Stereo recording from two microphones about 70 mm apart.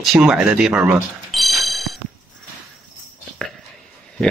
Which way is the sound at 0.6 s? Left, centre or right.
Centre.